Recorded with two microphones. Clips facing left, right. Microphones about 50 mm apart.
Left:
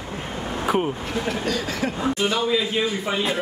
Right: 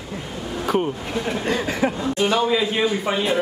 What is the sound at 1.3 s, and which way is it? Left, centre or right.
A man's voice, right.